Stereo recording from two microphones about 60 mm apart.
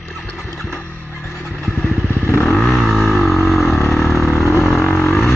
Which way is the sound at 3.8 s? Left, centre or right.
Left.